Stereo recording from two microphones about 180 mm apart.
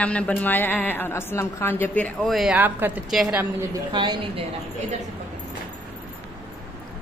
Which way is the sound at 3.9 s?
25° right (ahead or behind).